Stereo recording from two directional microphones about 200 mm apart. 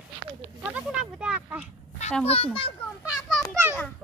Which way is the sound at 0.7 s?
5° right (ahead or behind).